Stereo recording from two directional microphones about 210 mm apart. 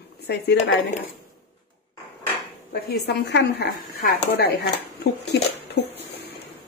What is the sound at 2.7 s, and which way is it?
A woman's voice, 50° left (ahead or behind).